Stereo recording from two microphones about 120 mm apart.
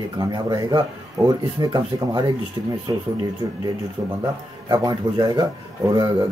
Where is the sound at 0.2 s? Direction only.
35° right (ahead or behind).